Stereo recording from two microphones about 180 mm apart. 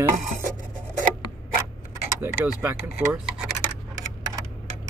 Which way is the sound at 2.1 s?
10° right (ahead or behind).